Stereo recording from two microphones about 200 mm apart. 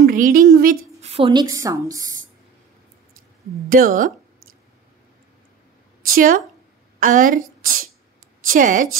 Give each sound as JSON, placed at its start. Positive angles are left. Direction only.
{"t": 0.1, "sound": "a woman's voice", "side_deg": -45}
{"t": 1.0, "sound": "a woman's voice", "side_deg": -30}
{"t": 3.7, "sound": "speech", "side_deg": -40}
{"t": 6.0, "sound": "a woman's voice", "side_deg": -45}